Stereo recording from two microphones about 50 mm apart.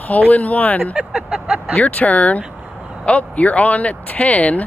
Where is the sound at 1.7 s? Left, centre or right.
Left.